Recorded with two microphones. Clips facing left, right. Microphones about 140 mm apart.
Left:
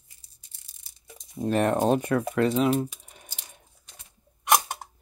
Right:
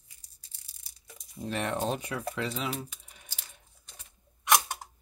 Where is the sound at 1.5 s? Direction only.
45° left (ahead or behind).